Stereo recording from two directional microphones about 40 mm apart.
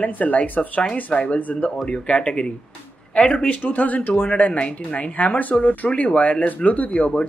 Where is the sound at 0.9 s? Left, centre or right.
Left.